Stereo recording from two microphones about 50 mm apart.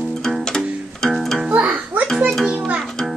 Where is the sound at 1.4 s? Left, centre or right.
Right.